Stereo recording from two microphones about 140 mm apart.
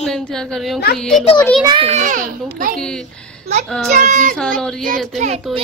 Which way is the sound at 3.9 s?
60° right (ahead or behind).